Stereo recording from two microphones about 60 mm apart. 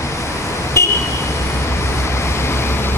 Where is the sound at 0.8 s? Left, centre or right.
Left.